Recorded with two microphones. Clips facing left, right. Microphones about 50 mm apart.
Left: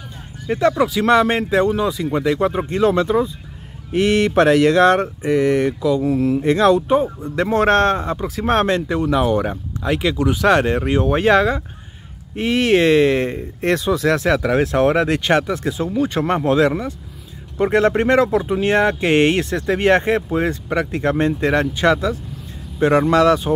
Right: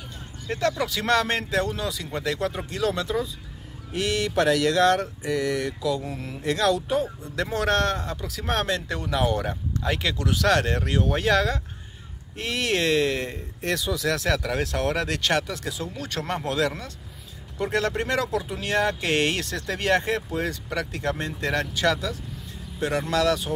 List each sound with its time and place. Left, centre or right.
0.5 s speech: centre
6.0 s speech: centre
6.4 s speech: left
8.8 s speech: centre